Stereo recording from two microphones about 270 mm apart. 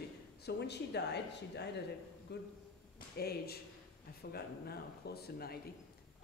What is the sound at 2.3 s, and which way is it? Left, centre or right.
A man's voice, left.